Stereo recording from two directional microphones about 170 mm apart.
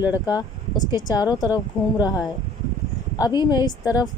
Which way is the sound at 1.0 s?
20° left (ahead or behind).